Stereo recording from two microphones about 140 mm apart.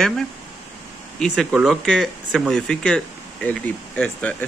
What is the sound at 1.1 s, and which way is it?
Speech, 5° left (ahead or behind).